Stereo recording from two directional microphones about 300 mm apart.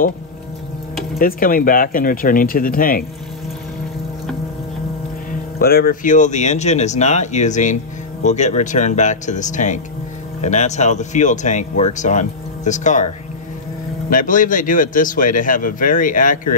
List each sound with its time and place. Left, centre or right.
1.1 s speech: left
5.6 s speech: left
14.1 s speech: left